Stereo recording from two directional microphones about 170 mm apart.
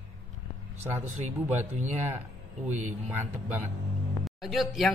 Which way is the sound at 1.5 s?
45° right (ahead or behind).